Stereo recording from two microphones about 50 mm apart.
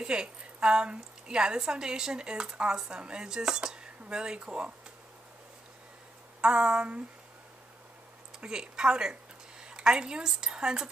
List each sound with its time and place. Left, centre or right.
0.0 s a woman's voice: centre
6.4 s a woman's voice: centre
8.4 s a woman's voice: centre